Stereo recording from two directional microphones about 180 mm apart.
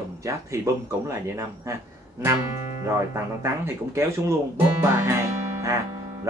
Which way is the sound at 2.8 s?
15° right (ahead or behind).